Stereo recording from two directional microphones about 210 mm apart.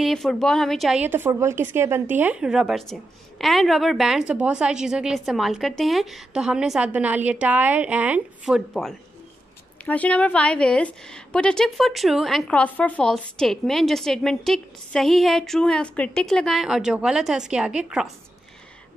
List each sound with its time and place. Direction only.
0.0 s a woman's voice: centre (ahead or behind)